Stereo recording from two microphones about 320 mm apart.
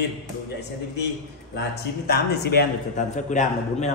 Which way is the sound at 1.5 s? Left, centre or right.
Left.